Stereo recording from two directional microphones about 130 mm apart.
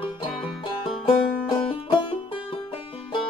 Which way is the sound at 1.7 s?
40° left (ahead or behind).